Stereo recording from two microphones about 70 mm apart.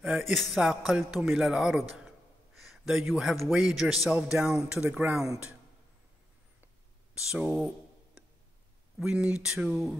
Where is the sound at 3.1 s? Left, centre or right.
Centre.